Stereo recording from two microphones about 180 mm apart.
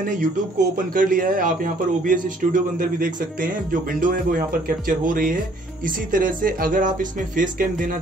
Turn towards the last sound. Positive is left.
turn(degrees=-50)  # may be behind; listen again after turning